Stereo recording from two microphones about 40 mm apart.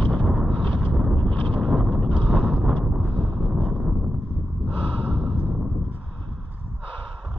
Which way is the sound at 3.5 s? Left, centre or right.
Right.